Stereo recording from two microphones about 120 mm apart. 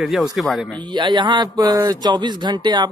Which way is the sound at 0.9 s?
40° right (ahead or behind).